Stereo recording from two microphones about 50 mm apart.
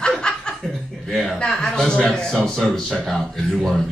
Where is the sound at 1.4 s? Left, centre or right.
Centre.